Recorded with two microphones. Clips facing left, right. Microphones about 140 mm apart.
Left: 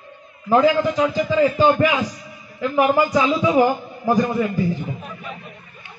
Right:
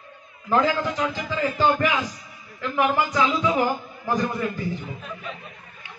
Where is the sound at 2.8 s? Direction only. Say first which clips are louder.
Left 4 dB; 15° left (ahead or behind).